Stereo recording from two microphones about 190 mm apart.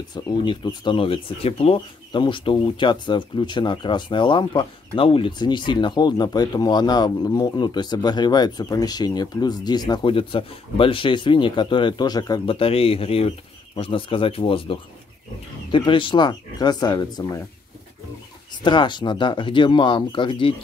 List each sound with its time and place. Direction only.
0.1 s speech: 20° left (ahead or behind)
18.6 s speech: 25° left (ahead or behind)